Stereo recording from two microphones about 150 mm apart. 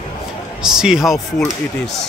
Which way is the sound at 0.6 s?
5° right (ahead or behind).